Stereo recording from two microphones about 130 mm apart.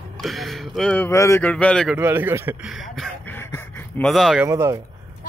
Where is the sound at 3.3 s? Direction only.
15° left (ahead or behind).